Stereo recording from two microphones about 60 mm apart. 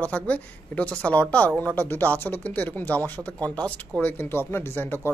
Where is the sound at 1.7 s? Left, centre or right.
Left.